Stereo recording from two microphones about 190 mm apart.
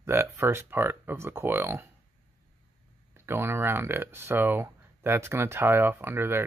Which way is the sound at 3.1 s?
15° right (ahead or behind).